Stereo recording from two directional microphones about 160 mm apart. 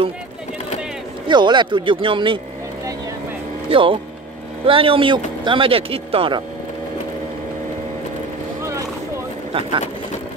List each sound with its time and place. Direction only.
1.2 s speech: 30° right (ahead or behind)
3.7 s speech: 35° right (ahead or behind)
9.5 s speech: 35° right (ahead or behind)